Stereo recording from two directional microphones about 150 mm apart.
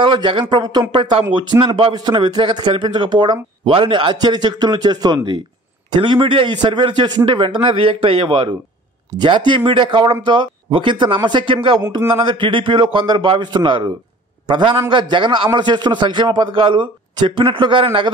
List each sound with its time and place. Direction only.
0.0 s a man's voice: 35° right (ahead or behind)